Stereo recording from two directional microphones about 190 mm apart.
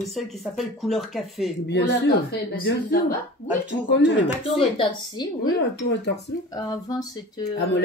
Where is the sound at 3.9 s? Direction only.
65° left (ahead or behind).